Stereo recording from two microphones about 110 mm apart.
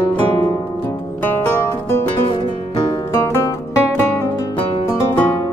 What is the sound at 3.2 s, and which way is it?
Music, 25° left (ahead or behind).